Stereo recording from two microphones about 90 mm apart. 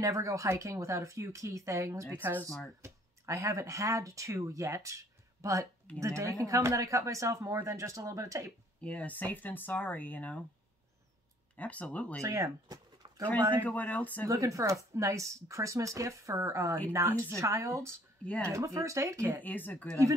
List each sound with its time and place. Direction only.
0.0 s speech: 35° right (ahead or behind)
2.8 s speech: 35° right (ahead or behind)
8.8 s speech: 15° left (ahead or behind)
11.5 s speech: 15° left (ahead or behind)
12.2 s speech: 35° right (ahead or behind)
13.7 s speech: 15° left (ahead or behind)
14.2 s speech: 40° right (ahead or behind)
18.2 s speech: 15° left (ahead or behind)
18.5 s speech: 35° right (ahead or behind)
19.4 s speech: 20° left (ahead or behind)